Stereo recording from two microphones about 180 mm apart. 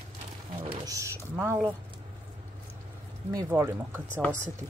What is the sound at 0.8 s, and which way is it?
Speech, 15° right (ahead or behind).